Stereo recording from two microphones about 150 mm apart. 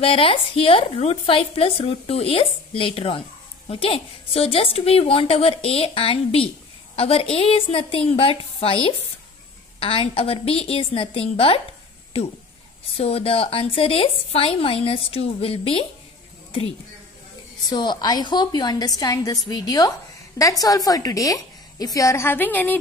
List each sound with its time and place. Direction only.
0.0 s speech: 35° left (ahead or behind)
12.9 s speech: 40° left (ahead or behind)
17.6 s a woman's voice: 25° left (ahead or behind); by 22.8 s 10° left (ahead or behind)